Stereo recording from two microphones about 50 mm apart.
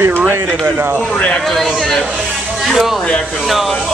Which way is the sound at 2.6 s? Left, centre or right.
Centre.